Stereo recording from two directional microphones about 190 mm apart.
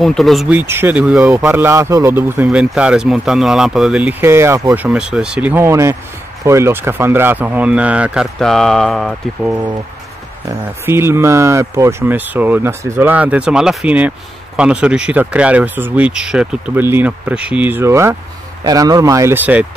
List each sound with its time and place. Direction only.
0.0 s speech: centre (ahead or behind)
10.9 s speech: 15° right (ahead or behind)